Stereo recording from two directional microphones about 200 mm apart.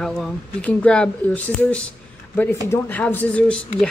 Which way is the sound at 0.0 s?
5° left (ahead or behind).